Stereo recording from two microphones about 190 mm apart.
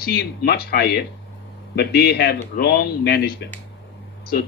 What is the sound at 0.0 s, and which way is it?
Speech, 55° left (ahead or behind).